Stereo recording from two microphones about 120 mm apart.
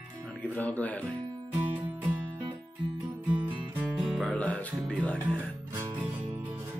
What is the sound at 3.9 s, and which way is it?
Music, centre (ahead or behind).